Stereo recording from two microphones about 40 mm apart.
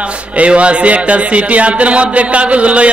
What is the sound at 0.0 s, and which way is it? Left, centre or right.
Speech, right.